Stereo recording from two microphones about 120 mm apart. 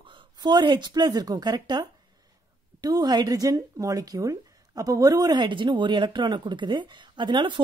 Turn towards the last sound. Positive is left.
turn(degrees=-40)  # may be behind; listen again after turning